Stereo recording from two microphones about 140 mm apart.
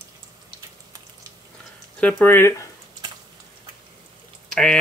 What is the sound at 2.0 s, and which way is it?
Speech, 15° left (ahead or behind).